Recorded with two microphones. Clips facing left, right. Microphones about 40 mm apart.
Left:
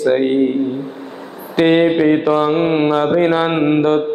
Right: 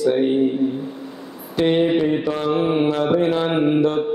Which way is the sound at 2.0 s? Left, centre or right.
Left.